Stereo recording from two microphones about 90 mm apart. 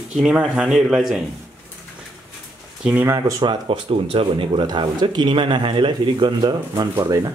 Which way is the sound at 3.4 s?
60° right (ahead or behind).